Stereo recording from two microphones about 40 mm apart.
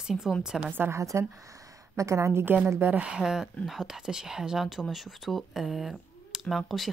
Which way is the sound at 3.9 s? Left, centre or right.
Centre.